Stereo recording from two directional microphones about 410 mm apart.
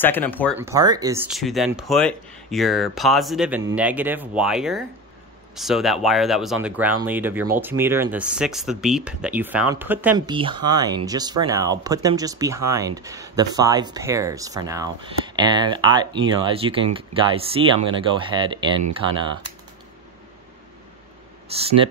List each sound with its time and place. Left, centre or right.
0.0 s speech: centre
18.8 s speech: right